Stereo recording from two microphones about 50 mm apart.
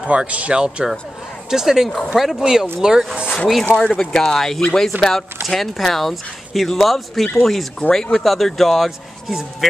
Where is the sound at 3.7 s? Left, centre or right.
Centre.